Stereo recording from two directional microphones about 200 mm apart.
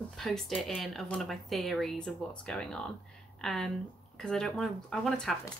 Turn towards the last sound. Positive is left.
turn(degrees=0)  # may be behind; listen again after turning